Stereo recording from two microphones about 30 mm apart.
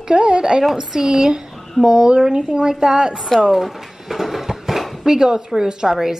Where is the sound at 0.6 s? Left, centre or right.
Centre.